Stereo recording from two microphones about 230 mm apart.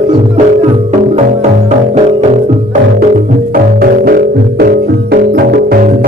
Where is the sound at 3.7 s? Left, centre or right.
Right.